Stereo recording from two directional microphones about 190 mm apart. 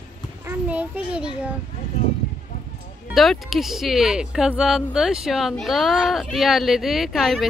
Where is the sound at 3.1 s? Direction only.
Centre (ahead or behind).